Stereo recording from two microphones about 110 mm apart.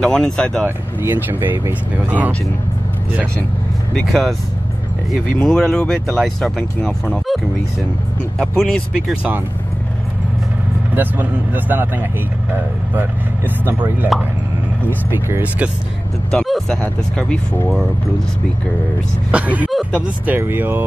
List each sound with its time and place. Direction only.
0.0 s speech: 5° left (ahead or behind)
0.7 s speech: 20° right (ahead or behind)
3.9 s speech: centre (ahead or behind)
11.0 s speech: 15° right (ahead or behind)
14.9 s speech: 20° right (ahead or behind)
16.3 s speech: 5° left (ahead or behind)
19.3 s speech: 15° right (ahead or behind)